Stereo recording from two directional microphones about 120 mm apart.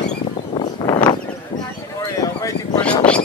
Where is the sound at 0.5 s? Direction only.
40° left (ahead or behind).